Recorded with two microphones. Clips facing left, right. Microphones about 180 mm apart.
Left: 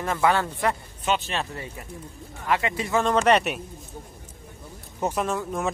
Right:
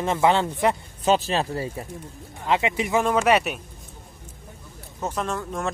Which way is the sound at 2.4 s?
20° right (ahead or behind).